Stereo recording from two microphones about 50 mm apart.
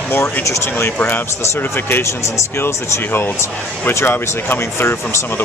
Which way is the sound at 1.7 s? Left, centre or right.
Left.